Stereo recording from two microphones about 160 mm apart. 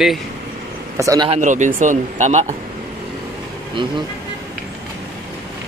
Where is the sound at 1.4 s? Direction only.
50° right (ahead or behind).